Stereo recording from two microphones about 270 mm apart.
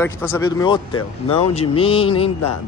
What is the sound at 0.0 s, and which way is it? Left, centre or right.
Speech, centre.